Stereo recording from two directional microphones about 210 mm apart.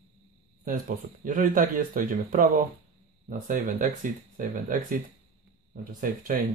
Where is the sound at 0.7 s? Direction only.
40° right (ahead or behind).